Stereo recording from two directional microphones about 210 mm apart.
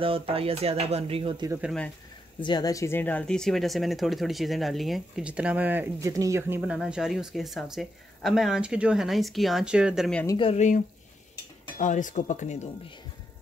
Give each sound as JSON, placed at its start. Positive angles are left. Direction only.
{"t": 0.0, "sound": "speech", "side_deg": -25}
{"t": 1.5, "sound": "speech", "side_deg": -5}
{"t": 2.4, "sound": "speech", "side_deg": 20}
{"t": 6.6, "sound": "speech", "side_deg": -5}
{"t": 10.2, "sound": "speech", "side_deg": 25}
{"t": 11.8, "sound": "speech", "side_deg": 35}